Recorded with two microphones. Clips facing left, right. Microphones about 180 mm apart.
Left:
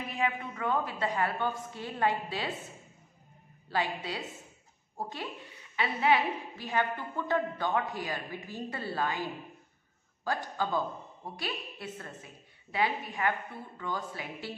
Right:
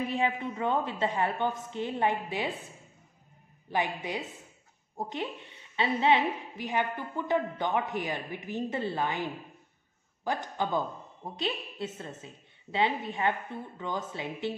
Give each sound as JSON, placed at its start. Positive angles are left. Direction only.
{"t": 0.1, "sound": "a woman's voice", "side_deg": -25}
{"t": 3.6, "sound": "a woman's voice", "side_deg": -20}
{"t": 10.2, "sound": "a woman's voice", "side_deg": -20}